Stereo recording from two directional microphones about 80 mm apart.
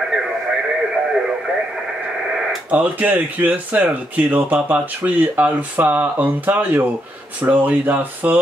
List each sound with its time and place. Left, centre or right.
2.7 s speech: centre